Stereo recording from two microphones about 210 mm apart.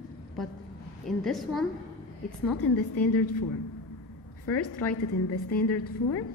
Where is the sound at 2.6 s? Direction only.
90° left.